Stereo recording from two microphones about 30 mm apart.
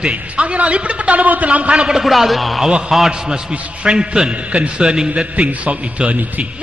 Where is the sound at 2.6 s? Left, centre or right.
Right.